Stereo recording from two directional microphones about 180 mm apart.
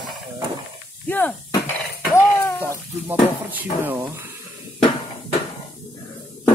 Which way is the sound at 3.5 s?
10° right (ahead or behind).